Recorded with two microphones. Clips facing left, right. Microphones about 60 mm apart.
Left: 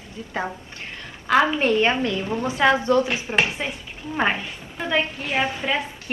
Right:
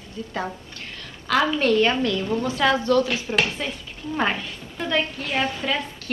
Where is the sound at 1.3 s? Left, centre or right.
Left.